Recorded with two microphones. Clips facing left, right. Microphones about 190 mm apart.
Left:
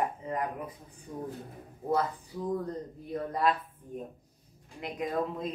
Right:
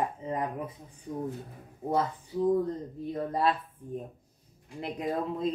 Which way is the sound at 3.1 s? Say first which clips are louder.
Right 1 dB; 30° right (ahead or behind).